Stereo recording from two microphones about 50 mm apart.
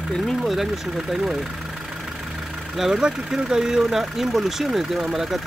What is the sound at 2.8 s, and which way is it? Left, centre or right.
Speech, centre.